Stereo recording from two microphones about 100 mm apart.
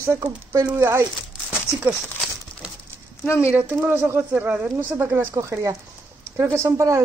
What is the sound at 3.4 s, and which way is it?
Speech, 20° right (ahead or behind).